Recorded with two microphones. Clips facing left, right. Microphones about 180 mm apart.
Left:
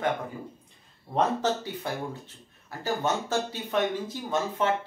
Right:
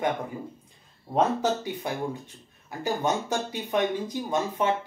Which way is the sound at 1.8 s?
15° right (ahead or behind).